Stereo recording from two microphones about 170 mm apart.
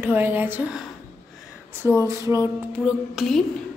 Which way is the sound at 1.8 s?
20° right (ahead or behind).